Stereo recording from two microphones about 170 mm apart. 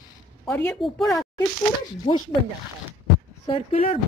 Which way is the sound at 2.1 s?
30° left (ahead or behind).